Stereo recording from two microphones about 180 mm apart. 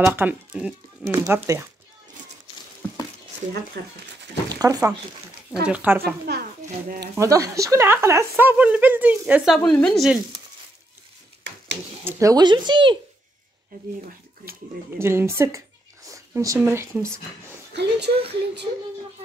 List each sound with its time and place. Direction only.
0.0 s speech: 10° right (ahead or behind)
1.1 s speech: 20° right (ahead or behind)
2.8 s a sound: 10° left (ahead or behind)
3.8 s speech: 65° right (ahead or behind)
4.6 s speech: 20° right (ahead or behind)
5.5 s speech: 10° right (ahead or behind)
6.3 s a sound: 65° right (ahead or behind)
7.2 s speech: 15° right (ahead or behind); by 10.1 s 5° left (ahead or behind)
12.0 s speech: 15° right (ahead or behind)
15.0 s speech: 15° right (ahead or behind)
17.7 s speech: 70° right (ahead or behind)